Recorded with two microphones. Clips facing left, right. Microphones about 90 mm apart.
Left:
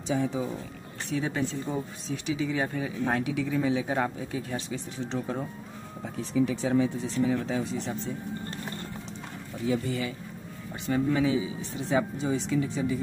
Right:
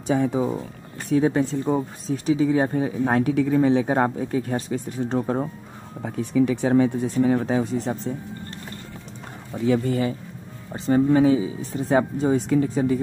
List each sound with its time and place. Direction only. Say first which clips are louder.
0.1 s speech: right 7 dB; 50° right (ahead or behind)
6.0 s speech: right 6 dB; 60° right (ahead or behind); by 8.1 s 40° right (ahead or behind)
9.8 s speech: right 8 dB; 40° right (ahead or behind)